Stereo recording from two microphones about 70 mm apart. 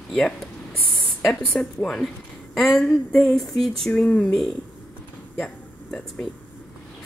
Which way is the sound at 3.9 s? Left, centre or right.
Centre.